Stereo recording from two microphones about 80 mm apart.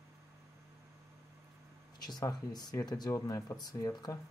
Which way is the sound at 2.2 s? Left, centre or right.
Left.